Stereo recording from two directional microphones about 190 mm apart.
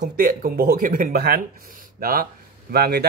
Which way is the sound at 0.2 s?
50° right (ahead or behind).